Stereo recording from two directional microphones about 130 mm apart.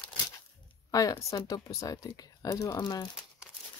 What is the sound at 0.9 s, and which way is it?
Speech, 30° left (ahead or behind).